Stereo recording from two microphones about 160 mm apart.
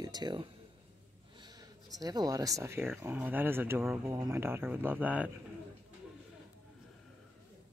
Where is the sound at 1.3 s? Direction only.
25° right (ahead or behind).